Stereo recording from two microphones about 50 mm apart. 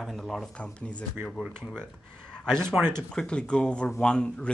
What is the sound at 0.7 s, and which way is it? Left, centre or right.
Speech, left.